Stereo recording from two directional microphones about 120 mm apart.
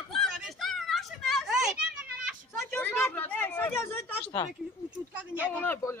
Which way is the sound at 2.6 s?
15° left (ahead or behind).